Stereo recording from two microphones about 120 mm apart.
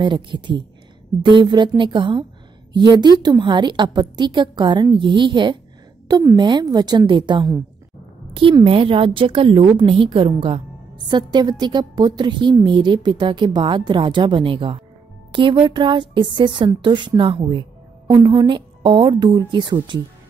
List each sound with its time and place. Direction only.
0.0 s a woman's voice: 40° right (ahead or behind)